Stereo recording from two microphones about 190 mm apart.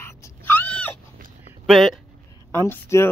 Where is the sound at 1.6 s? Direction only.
Centre (ahead or behind).